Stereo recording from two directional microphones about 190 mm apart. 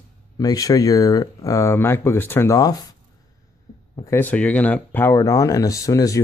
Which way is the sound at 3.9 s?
15° left (ahead or behind).